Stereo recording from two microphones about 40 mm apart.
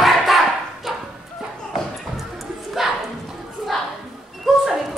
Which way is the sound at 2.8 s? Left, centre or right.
Centre.